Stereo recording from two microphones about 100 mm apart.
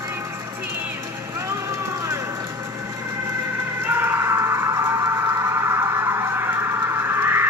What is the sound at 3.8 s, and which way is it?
Music, 20° right (ahead or behind).